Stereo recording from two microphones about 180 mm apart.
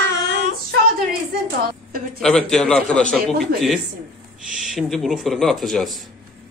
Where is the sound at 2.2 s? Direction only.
5° left (ahead or behind).